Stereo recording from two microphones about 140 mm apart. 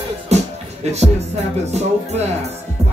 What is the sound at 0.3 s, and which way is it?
Music, 50° right (ahead or behind).